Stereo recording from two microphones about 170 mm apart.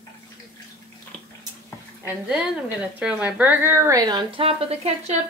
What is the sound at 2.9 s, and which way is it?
A woman's voice, 5° right (ahead or behind).